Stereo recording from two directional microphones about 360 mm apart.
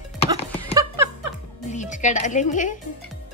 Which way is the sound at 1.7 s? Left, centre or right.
Centre.